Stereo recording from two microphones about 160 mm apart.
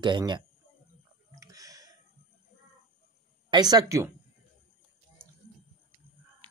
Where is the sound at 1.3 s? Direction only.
20° right (ahead or behind).